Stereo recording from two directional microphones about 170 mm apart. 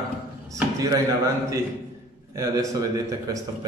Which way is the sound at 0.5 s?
20° right (ahead or behind).